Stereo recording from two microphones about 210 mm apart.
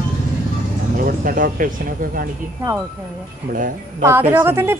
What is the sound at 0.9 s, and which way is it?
Speech, 40° right (ahead or behind).